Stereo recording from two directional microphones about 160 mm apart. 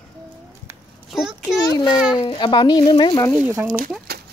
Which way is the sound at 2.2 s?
30° left (ahead or behind).